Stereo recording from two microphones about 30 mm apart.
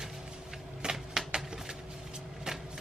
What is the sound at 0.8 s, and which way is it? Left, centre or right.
Typewriter, right.